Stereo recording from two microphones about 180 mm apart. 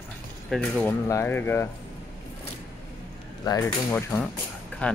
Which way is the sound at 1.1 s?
15° left (ahead or behind).